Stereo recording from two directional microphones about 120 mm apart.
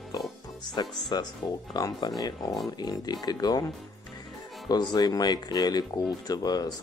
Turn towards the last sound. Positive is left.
turn(degrees=35)  # may be behind; listen again after turning